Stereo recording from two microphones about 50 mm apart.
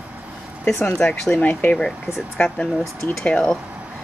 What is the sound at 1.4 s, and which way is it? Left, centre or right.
Speech, left.